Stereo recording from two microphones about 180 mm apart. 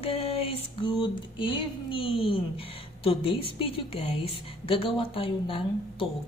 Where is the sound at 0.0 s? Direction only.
30° left (ahead or behind).